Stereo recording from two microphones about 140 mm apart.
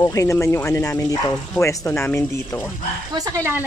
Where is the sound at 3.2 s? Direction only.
25° right (ahead or behind).